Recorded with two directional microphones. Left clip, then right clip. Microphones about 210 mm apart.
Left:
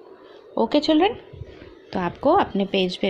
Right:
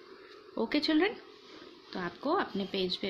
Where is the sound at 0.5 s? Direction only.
15° left (ahead or behind).